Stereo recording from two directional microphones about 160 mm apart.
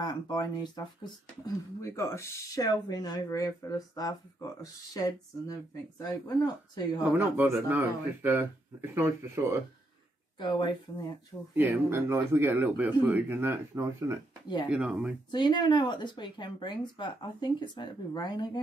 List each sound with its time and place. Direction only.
0.0 s speech: 25° left (ahead or behind)
7.1 s speech: 10° right (ahead or behind)
10.4 s speech: 30° left (ahead or behind)
11.5 s speech: 15° right (ahead or behind)
14.7 s speech: 5° right (ahead or behind)
15.3 s speech: 30° left (ahead or behind)